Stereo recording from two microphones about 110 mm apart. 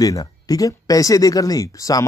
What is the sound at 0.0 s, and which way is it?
Speech, 35° left (ahead or behind).